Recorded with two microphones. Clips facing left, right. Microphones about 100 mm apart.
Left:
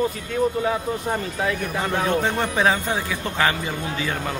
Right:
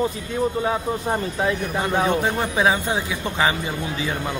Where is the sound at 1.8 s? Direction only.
15° right (ahead or behind).